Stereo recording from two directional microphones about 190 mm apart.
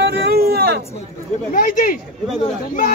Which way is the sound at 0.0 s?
60° right (ahead or behind).